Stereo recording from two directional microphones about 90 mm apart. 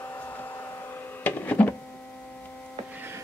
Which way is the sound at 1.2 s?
20° left (ahead or behind).